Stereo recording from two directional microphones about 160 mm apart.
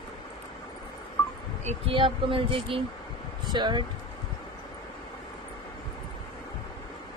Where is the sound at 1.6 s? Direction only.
35° right (ahead or behind).